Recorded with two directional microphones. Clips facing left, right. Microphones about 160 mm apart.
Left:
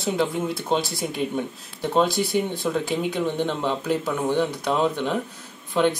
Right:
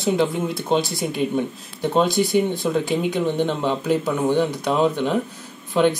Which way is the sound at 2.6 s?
5° right (ahead or behind).